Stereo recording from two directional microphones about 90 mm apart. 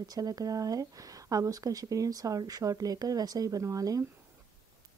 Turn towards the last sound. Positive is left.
turn(degrees=-40)  # may be behind; listen again after turning